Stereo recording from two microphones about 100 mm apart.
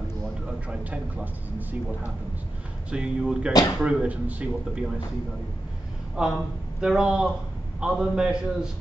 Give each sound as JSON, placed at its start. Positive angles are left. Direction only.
{"t": 0.7, "sound": "speech", "side_deg": -15}
{"t": 2.9, "sound": "a man's voice", "side_deg": -10}
{"t": 6.1, "sound": "a man's voice", "side_deg": -5}